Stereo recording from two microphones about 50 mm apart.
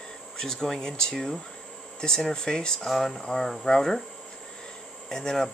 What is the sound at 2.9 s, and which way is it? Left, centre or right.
Speech, centre.